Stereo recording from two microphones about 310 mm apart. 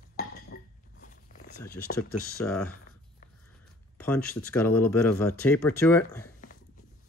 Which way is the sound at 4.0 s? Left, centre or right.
Centre.